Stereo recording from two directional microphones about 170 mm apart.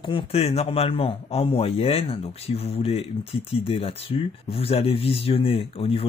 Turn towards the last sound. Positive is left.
turn(degrees=35)  # may be behind; listen again after turning